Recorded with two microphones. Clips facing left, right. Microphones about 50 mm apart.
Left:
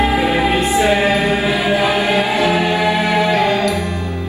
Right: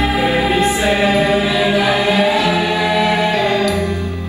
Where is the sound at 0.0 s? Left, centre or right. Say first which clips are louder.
Left 1 dB; left.